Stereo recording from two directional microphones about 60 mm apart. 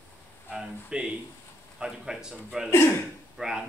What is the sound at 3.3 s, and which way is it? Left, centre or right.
Speech, centre.